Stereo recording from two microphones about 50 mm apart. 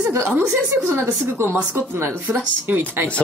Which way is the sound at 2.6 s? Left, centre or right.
Right.